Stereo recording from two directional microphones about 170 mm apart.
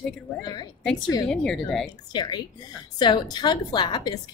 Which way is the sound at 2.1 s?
25° left (ahead or behind).